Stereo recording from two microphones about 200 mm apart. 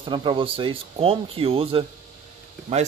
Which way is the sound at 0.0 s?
25° right (ahead or behind).